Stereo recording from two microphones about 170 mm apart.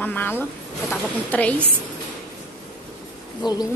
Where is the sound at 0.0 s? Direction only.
10° left (ahead or behind).